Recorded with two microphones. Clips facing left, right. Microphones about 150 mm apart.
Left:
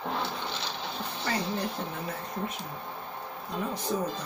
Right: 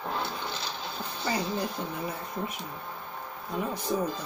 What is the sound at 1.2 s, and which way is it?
Music, 15° right (ahead or behind).